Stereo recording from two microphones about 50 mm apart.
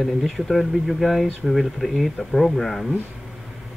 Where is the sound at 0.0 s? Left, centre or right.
Centre.